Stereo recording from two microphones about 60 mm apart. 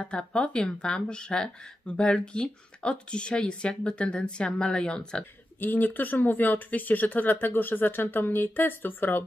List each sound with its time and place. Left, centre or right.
0.0 s speech: centre
5.6 s speech: left